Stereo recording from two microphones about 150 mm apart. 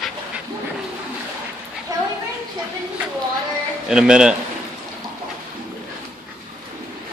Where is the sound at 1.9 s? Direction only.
20° right (ahead or behind).